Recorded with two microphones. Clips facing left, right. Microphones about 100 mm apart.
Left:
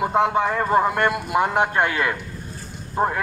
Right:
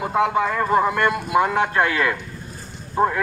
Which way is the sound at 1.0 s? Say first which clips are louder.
Right 1 dB; 15° left (ahead or behind).